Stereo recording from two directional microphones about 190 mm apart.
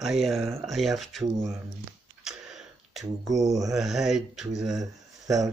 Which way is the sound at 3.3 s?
20° right (ahead or behind).